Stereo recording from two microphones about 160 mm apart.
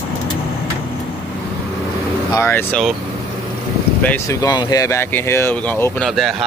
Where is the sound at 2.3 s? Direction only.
15° left (ahead or behind).